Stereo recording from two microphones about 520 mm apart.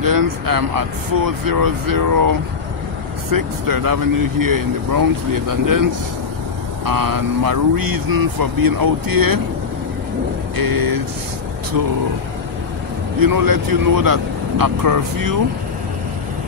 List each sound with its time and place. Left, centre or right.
0.0 s speech: right
10.5 s speech: right
13.2 s speech: right